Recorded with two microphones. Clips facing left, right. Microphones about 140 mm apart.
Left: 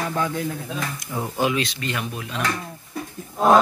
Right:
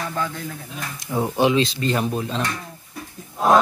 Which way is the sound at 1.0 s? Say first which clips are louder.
Right 5 dB; 20° right (ahead or behind).